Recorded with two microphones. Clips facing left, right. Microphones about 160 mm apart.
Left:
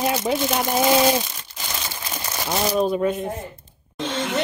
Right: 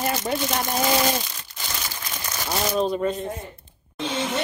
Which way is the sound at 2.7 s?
10° left (ahead or behind).